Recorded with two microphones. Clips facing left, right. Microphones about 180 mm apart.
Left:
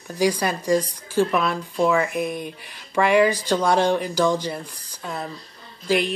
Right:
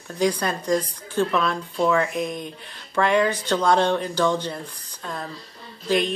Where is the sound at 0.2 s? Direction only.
10° left (ahead or behind).